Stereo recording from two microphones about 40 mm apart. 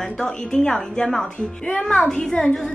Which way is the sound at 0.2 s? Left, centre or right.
Centre.